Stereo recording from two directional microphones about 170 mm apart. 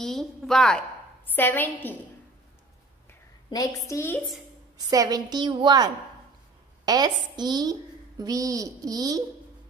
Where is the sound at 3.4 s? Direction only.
20° left (ahead or behind).